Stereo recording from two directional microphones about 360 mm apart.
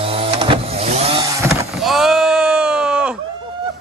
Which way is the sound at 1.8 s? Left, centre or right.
Centre.